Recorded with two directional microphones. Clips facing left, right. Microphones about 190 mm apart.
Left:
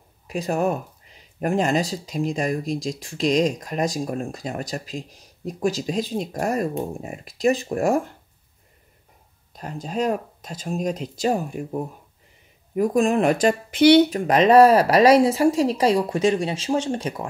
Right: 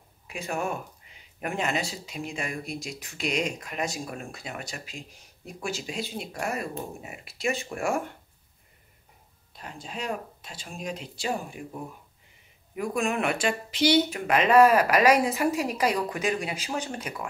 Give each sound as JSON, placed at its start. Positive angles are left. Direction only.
{"t": 0.3, "sound": "speech", "side_deg": 40}
{"t": 9.5, "sound": "speech", "side_deg": 40}
{"t": 13.7, "sound": "speech", "side_deg": 60}
{"t": 14.1, "sound": "speech", "side_deg": 35}